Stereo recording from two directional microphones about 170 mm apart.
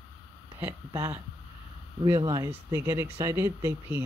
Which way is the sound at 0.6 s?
15° right (ahead or behind).